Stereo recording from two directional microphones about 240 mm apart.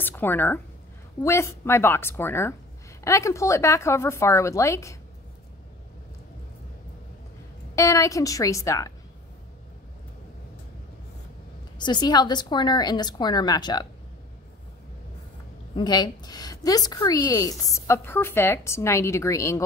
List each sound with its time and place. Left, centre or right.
0.0 s a woman's voice: centre
7.7 s a woman's voice: centre
11.8 s a woman's voice: centre
15.7 s a woman's voice: centre